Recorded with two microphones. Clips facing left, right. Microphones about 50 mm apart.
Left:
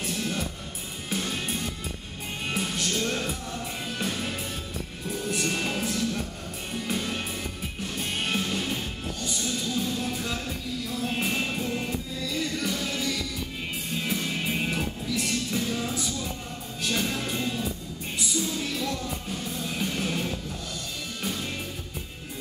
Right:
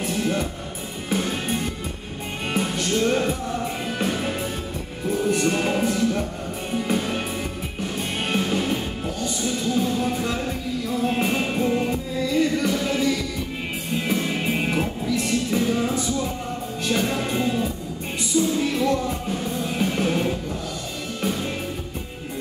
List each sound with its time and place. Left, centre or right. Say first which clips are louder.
0.0 s music: right 6 dB; centre